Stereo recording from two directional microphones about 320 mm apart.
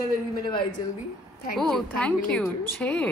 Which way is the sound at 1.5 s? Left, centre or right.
Centre.